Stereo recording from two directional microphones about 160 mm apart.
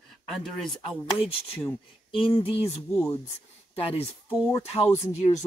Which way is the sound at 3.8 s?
35° left (ahead or behind).